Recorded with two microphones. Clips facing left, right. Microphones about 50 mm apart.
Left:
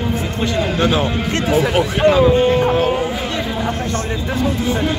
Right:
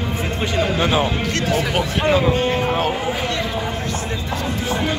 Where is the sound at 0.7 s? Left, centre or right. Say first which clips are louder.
Left 3 dB; centre.